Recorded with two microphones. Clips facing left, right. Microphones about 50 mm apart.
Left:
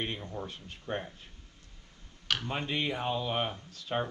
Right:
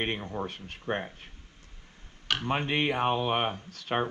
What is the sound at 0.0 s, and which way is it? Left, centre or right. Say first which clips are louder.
Speech: right 5 dB; right.